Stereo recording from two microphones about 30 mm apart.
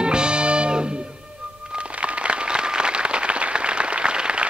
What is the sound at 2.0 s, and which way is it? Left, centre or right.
Applause, right.